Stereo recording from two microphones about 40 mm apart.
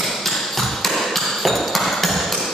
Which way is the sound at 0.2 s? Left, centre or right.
Centre.